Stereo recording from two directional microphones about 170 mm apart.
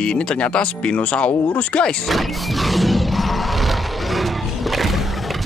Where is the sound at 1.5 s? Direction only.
5° left (ahead or behind).